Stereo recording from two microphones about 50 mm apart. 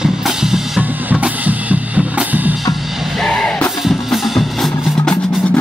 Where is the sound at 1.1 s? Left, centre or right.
Right.